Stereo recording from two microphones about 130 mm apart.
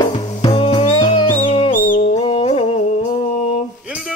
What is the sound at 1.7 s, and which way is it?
Music, 90° left.